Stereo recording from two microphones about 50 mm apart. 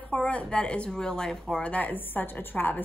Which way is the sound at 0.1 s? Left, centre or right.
Left.